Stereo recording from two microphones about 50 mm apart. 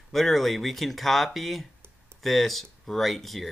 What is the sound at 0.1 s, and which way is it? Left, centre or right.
Speech, centre.